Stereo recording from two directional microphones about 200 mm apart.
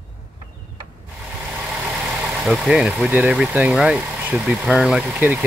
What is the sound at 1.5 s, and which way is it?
Speech, 5° right (ahead or behind).